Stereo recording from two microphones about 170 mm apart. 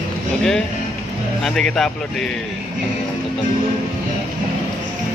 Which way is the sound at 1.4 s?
Centre (ahead or behind).